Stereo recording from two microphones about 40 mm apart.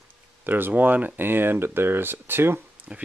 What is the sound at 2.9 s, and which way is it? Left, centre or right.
Speech, right.